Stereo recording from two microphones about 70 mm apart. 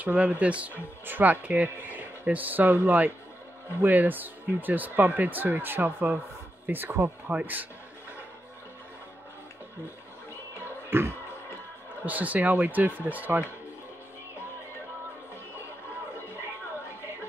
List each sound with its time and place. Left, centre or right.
0.0 s speech: right
10.6 s music: right
12.0 s speech: right